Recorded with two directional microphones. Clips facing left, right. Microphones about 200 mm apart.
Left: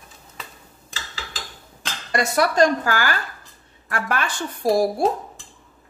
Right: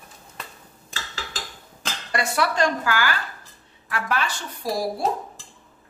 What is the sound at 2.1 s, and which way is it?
A woman's voice, 40° left (ahead or behind).